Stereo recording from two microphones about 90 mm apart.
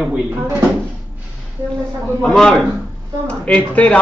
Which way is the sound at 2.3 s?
5° left (ahead or behind).